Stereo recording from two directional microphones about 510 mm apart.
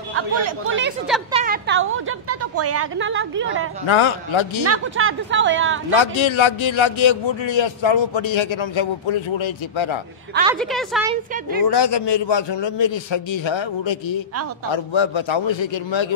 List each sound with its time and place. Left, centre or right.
0.1 s speech: right
1.0 s a woman's voice: centre
1.4 s a woman's voice: centre
3.8 s a man's voice: left
4.6 s speech: right
5.9 s a man's voice: left
10.3 s a woman's voice: centre
11.6 s a man's voice: left